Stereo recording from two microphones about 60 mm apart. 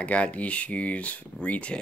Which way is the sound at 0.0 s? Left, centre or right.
Left.